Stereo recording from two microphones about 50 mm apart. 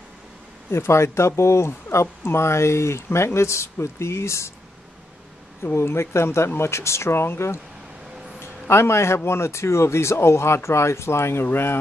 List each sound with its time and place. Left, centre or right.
0.7 s speech: left
5.8 s speech: left
11.4 s speech: left